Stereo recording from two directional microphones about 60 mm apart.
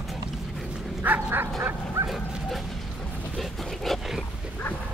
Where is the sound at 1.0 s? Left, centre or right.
Right.